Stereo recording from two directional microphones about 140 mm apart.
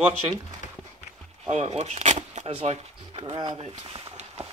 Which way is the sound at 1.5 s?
55° right (ahead or behind).